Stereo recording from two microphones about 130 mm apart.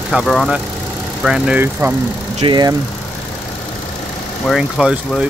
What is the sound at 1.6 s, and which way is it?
Speech, 20° right (ahead or behind).